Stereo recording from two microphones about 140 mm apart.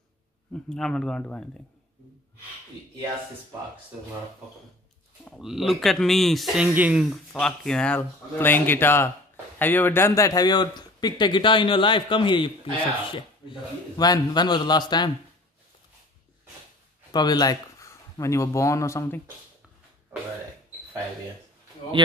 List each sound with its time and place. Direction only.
0.5 s speech: 5° left (ahead or behind)
5.2 s speech: centre (ahead or behind)
7.1 s speech: 5° left (ahead or behind); by 15.0 s 30° left (ahead or behind)
17.1 s speech: 30° left (ahead or behind)
20.1 s speech: 15° right (ahead or behind)